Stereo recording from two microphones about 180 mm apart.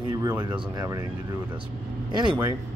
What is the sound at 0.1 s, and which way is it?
Speech, 20° right (ahead or behind).